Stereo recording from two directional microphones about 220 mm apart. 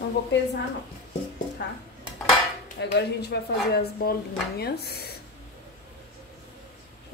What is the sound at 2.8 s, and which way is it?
A woman's voice, 50° left (ahead or behind).